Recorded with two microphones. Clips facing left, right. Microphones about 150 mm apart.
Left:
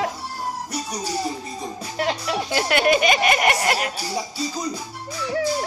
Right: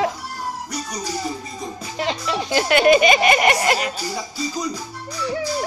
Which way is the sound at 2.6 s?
Centre (ahead or behind).